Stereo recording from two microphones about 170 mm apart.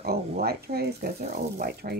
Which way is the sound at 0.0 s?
65° right (ahead or behind).